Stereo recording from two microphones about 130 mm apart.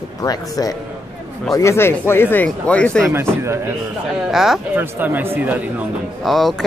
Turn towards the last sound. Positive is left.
turn(degrees=0)  # may be behind; listen again after turning